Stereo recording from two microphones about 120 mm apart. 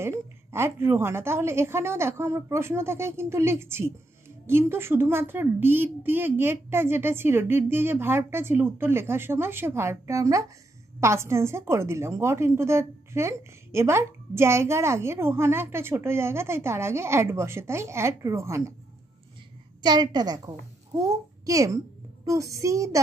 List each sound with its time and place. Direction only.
0.5 s a woman's voice: 20° right (ahead or behind)
19.8 s a woman's voice: 35° right (ahead or behind)